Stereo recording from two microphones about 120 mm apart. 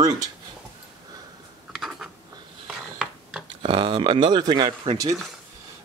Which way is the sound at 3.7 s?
45° right (ahead or behind).